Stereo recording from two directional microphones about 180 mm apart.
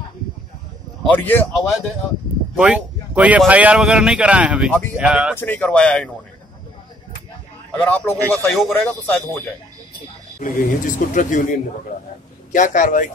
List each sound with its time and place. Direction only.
1.0 s speech: 10° left (ahead or behind)
2.5 s speech: 5° right (ahead or behind)
5.4 s speech: 10° left (ahead or behind)
7.7 s speech: 10° left (ahead or behind)
10.4 s speech: 45° left (ahead or behind)
12.5 s speech: 45° left (ahead or behind)